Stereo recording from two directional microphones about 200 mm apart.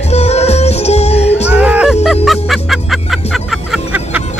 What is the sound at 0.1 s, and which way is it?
Music, 30° left (ahead or behind).